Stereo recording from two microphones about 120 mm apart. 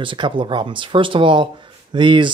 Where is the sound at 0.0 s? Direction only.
40° right (ahead or behind).